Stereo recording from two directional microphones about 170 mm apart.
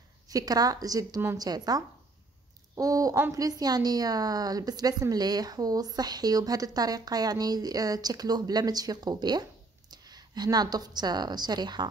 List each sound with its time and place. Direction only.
0.3 s a woman's voice: 20° right (ahead or behind)